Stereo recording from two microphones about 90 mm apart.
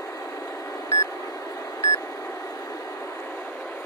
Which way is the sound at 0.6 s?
40° left (ahead or behind).